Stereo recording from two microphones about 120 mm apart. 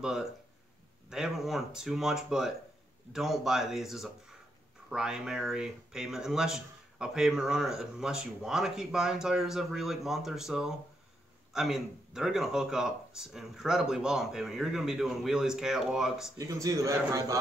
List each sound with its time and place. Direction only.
0.0 s speech: 5° right (ahead or behind)
16.3 s speech: 30° right (ahead or behind)